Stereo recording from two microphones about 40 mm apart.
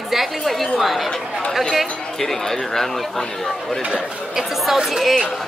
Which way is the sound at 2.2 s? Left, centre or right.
Centre.